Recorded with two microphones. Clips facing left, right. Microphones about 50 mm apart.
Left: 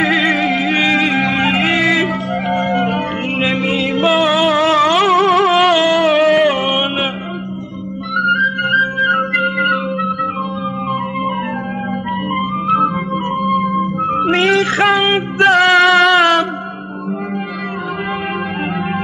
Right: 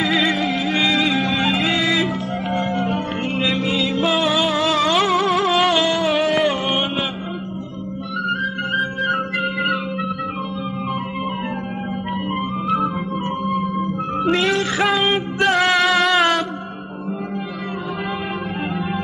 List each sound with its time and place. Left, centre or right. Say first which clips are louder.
0.3 s music: left 5 dB; left
0.7 s music: left 3 dB; centre
1.0 s music: left 4 dB; left
4.1 s music: left 6 dB; centre
4.5 s a sound: left 6 dB; left
5.0 s music: left 6 dB; left
5.5 s carnatic music: left 5 dB; centre
6.1 s music: left 6 dB; centre
8.2 s music: left 9 dB; left
9.1 s music: left 6 dB; centre
14.3 s music: left 5 dB; left
14.9 s male singing: left 5 dB; centre